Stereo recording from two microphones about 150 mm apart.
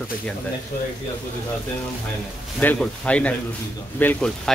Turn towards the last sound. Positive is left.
turn(degrees=10)  # may be behind; listen again after turning